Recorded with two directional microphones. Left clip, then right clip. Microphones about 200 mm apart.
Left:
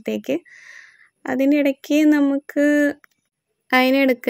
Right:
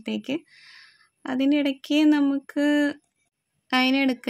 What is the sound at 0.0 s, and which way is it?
Speech, 20° left (ahead or behind).